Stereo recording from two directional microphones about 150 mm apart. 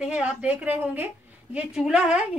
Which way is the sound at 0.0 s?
5° right (ahead or behind).